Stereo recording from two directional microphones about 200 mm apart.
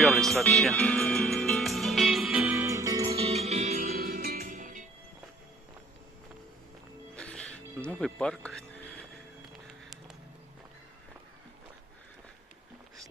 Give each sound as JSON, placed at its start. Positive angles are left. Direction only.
{"t": 0.0, "sound": "music", "side_deg": 0}
{"t": 2.5, "sound": "music", "side_deg": -15}
{"t": 3.2, "sound": "music", "side_deg": -30}
{"t": 3.8, "sound": "music", "side_deg": -50}
{"t": 7.2, "sound": "music", "side_deg": 5}
{"t": 9.5, "sound": "a sound", "side_deg": 0}